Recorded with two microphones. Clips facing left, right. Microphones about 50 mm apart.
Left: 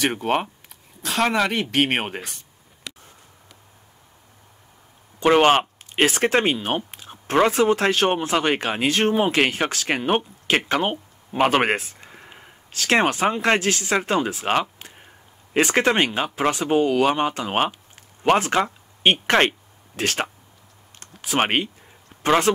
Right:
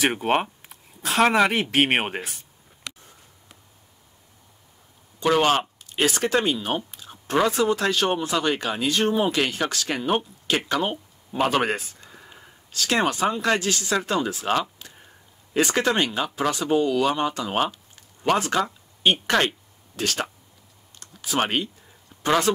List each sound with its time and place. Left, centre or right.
0.0 s speech: centre
5.2 s speech: left
14.4 s a sound: left
15.5 s speech: left
21.0 s computer keyboard: left
22.2 s speech: left